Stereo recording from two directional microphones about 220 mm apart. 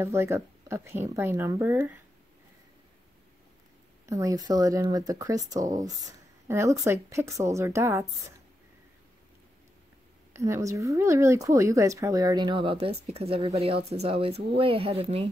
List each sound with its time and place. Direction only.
0.0 s speech: 10° right (ahead or behind)
4.0 s speech: 15° right (ahead or behind)
10.3 s speech: 15° right (ahead or behind)